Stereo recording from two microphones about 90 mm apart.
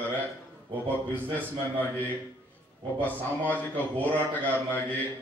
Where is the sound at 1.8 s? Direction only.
20° left (ahead or behind).